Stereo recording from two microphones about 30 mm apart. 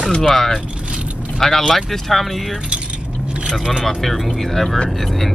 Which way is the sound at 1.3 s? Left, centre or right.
Centre.